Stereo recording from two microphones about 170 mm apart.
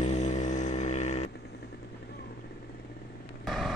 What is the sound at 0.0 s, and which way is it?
Vehicle, 45° left (ahead or behind).